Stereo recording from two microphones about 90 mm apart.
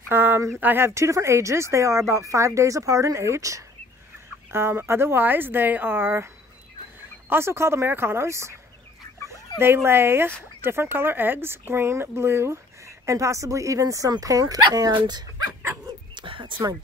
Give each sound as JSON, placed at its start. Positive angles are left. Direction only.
{"t": 0.1, "sound": "a sound", "side_deg": -25}
{"t": 0.6, "sound": "speech", "side_deg": -25}
{"t": 9.6, "sound": "speech", "side_deg": -25}
{"t": 16.2, "sound": "speech", "side_deg": -70}